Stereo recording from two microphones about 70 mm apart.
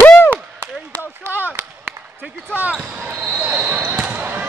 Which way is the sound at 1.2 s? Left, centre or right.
Right.